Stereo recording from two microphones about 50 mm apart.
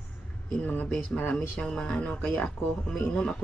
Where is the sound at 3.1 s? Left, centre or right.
Centre.